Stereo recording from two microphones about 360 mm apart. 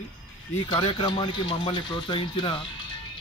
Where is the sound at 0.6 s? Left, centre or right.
Centre.